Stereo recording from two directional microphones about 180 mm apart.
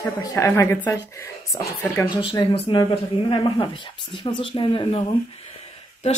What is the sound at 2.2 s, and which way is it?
Speech, 30° left (ahead or behind).